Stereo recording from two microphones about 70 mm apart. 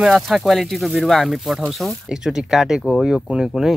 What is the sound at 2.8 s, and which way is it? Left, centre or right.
Speech, centre.